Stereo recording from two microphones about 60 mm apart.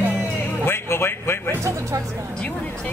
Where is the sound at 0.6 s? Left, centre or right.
Left.